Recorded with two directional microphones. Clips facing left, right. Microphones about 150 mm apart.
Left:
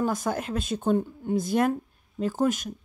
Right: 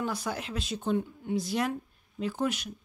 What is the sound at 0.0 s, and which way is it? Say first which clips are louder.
Speech: left 6 dB; 45° left (ahead or behind).